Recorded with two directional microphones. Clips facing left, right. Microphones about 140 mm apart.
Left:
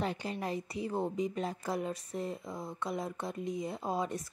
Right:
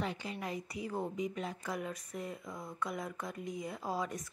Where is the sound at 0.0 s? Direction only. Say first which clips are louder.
Left 3 dB; 35° left (ahead or behind).